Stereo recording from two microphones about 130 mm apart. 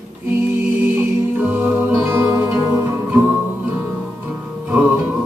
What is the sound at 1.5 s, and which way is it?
Music, 15° right (ahead or behind).